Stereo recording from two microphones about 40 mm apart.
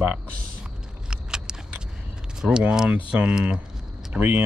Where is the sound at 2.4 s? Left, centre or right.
Right.